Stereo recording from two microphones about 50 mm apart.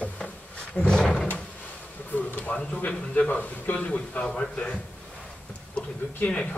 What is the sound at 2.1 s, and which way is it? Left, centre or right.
A man's voice, left.